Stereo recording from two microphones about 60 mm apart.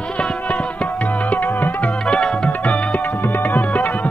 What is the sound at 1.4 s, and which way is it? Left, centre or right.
Music, left.